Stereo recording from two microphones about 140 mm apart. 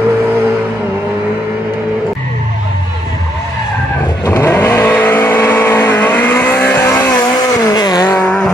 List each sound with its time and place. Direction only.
4.3 s vehicle: 15° left (ahead or behind)
7.3 s vehicle: 30° left (ahead or behind)
8.2 s vehicle: 5° left (ahead or behind)